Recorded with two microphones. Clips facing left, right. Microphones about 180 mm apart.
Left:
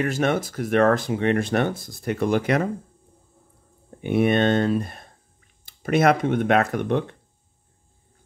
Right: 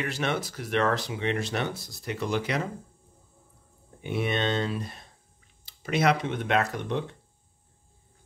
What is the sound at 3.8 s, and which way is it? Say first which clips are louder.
Speech: left 9 dB; 55° left (ahead or behind).